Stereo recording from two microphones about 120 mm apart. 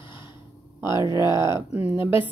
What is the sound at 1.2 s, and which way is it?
Speech, 40° left (ahead or behind).